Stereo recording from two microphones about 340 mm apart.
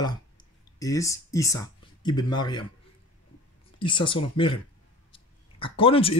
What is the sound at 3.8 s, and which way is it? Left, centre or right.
Speech, centre.